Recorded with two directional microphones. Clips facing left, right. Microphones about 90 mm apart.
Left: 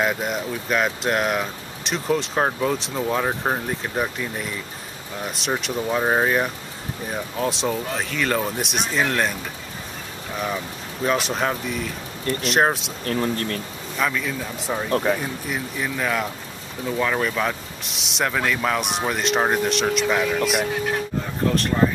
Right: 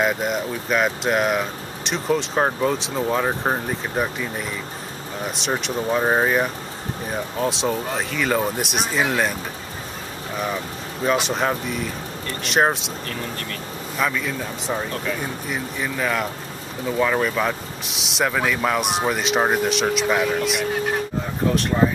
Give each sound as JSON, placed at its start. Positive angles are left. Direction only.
{"t": 0.0, "sound": "speech", "side_deg": 0}
{"t": 11.1, "sound": "speech", "side_deg": 0}
{"t": 13.0, "sound": "speech", "side_deg": 40}
{"t": 13.9, "sound": "speech", "side_deg": 0}